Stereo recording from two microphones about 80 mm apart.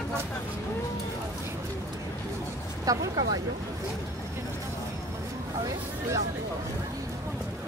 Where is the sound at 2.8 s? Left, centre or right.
Right.